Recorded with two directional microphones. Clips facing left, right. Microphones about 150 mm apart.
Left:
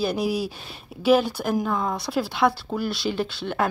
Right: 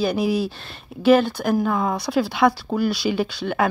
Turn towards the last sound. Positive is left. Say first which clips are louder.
# right 3 dB
turn(degrees=0)  # may be behind; listen again after turning